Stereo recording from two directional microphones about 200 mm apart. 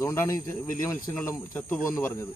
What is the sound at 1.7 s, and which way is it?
Speech, 10° left (ahead or behind).